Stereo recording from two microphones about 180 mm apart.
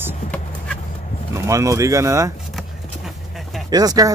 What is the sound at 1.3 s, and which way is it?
Speech, 15° right (ahead or behind).